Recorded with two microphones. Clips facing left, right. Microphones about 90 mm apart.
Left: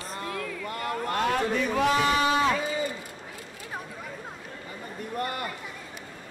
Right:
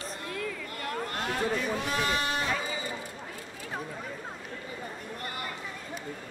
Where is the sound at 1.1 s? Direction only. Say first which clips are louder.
Left 6 dB; 90° left.